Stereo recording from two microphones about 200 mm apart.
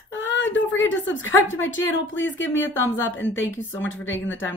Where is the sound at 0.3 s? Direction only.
65° left (ahead or behind).